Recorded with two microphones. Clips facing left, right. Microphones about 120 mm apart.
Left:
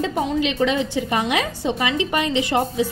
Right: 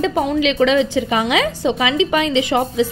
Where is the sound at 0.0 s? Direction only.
90° right.